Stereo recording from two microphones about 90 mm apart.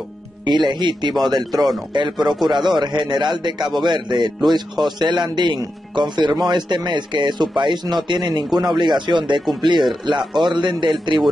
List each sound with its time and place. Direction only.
0.5 s a man's voice: 55° right (ahead or behind)